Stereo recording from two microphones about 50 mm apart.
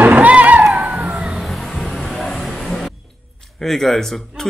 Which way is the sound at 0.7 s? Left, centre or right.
Right.